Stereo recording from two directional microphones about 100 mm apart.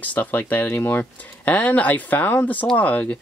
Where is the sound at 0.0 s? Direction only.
15° left (ahead or behind).